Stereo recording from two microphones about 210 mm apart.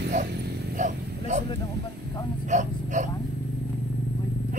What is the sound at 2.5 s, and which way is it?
Dog, 35° right (ahead or behind).